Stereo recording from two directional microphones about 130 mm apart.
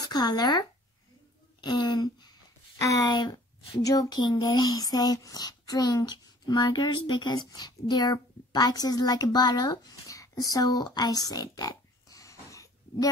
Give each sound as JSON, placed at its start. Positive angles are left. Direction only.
{"t": 0.0, "sound": "speech", "side_deg": 30}